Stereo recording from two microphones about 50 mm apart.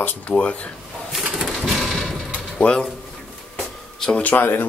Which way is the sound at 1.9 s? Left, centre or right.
Centre.